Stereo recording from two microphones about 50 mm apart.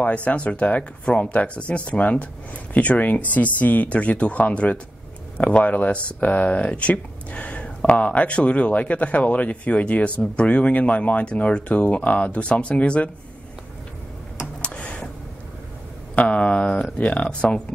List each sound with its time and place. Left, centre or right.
0.0 s speech: left
14.6 s a sound: left
16.2 s speech: left